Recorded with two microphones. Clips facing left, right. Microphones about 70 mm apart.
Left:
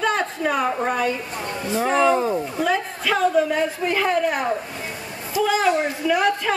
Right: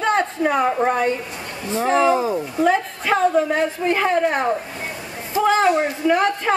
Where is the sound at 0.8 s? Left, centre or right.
Right.